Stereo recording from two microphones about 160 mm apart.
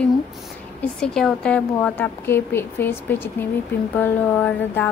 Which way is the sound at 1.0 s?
5° left (ahead or behind).